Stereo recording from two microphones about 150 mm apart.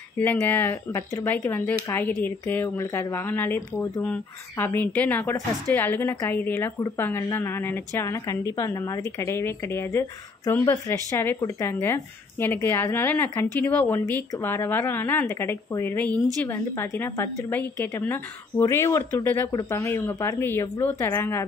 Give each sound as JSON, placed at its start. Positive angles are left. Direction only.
{"t": 0.2, "sound": "speech", "side_deg": 15}